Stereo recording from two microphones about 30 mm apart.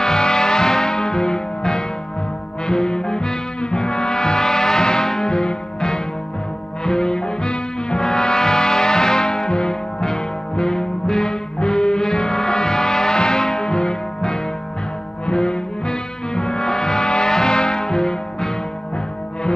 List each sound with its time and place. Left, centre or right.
0.0 s music: left
2.6 s brass instrument: left
6.8 s music: left